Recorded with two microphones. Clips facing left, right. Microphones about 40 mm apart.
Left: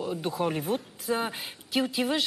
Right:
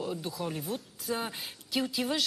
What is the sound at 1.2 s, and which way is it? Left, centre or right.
Speech, centre.